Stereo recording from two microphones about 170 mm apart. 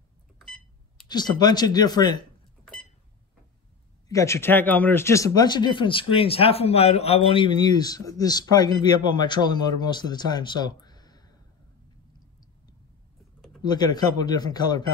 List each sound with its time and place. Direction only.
1.0 s speech: 25° left (ahead or behind)
4.1 s speech: 15° left (ahead or behind)
13.6 s speech: 25° left (ahead or behind)